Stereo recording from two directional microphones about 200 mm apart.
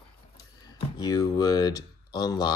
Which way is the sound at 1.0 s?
20° left (ahead or behind).